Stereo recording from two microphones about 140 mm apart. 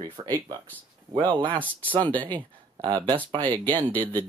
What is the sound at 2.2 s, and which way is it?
Speech, 35° right (ahead or behind).